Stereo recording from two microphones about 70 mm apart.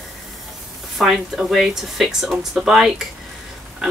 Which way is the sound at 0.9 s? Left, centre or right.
Centre.